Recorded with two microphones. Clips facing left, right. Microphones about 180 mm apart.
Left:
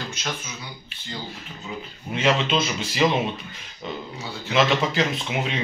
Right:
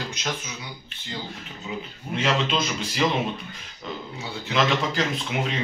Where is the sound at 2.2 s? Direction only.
Centre (ahead or behind).